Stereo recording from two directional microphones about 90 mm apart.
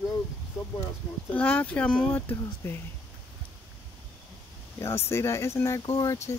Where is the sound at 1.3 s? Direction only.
20° left (ahead or behind).